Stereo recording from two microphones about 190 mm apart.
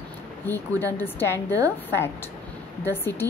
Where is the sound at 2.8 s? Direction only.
10° left (ahead or behind).